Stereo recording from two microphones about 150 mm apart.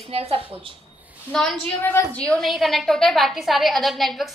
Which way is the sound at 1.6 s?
15° left (ahead or behind).